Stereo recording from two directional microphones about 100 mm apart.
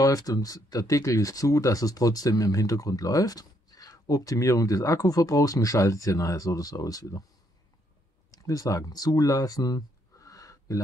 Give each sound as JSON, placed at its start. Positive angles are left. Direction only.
{"t": 0.0, "sound": "speech", "side_deg": 35}
{"t": 8.3, "sound": "speech", "side_deg": 35}